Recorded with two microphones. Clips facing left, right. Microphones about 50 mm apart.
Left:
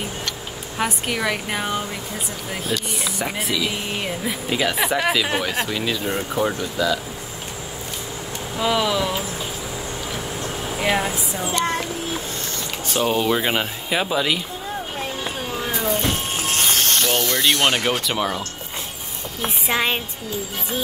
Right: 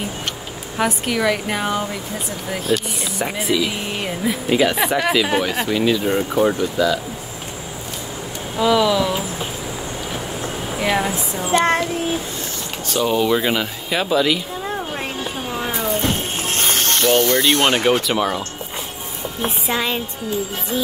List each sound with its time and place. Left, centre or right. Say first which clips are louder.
0.7 s speech: right 4 dB; centre
3.0 s speech: right 2 dB; centre
8.5 s speech: right 5 dB; centre
10.8 s speech: right 2 dB; centre
12.8 s speech: right 2 dB; centre
15.7 s a sound: even; centre
16.0 s a sound: right 2 dB; right
18.0 s speech: right 3 dB; centre
19.7 s music: left 1 dB; left